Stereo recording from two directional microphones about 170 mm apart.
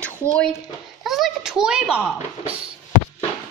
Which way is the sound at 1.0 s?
Centre (ahead or behind).